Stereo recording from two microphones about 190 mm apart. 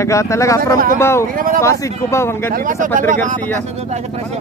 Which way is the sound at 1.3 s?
45° right (ahead or behind).